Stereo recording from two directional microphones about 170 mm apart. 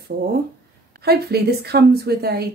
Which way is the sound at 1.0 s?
70° right (ahead or behind).